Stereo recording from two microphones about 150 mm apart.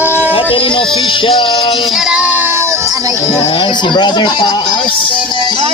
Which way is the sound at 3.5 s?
35° left (ahead or behind).